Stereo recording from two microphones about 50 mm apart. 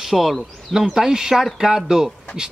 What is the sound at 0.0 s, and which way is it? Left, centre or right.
Speech, centre.